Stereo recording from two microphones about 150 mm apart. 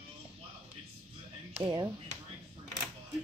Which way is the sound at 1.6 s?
30° right (ahead or behind).